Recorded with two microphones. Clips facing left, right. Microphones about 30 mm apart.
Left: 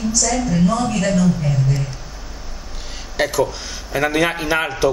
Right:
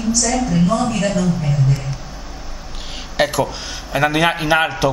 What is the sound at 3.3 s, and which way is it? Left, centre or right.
A man's voice, centre.